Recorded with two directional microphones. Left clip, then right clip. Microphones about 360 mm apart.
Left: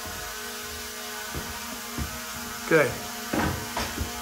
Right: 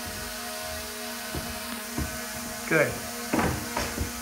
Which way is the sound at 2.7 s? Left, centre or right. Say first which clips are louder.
Left 2 dB; centre.